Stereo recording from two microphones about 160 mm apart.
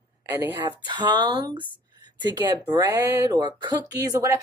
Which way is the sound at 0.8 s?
30° right (ahead or behind).